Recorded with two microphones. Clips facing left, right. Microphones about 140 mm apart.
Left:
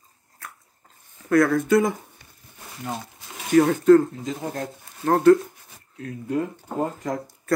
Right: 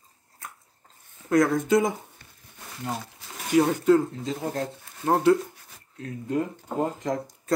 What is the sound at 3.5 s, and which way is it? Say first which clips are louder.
Speech: left 5 dB; 10° right (ahead or behind).